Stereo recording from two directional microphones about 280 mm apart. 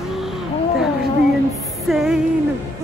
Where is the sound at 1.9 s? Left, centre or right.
Centre.